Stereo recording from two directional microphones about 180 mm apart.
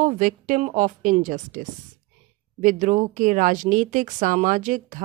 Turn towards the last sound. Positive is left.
turn(degrees=-45)  # may be behind; listen again after turning